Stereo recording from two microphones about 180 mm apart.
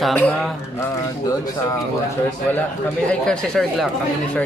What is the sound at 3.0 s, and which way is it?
Speech, 5° left (ahead or behind).